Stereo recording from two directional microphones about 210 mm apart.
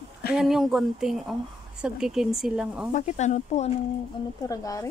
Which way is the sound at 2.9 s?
35° left (ahead or behind).